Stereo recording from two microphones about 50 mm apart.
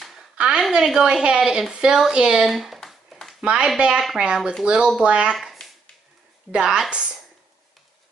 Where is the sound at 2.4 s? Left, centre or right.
Centre.